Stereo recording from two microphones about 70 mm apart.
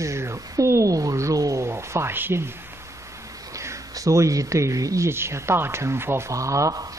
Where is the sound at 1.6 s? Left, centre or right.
Right.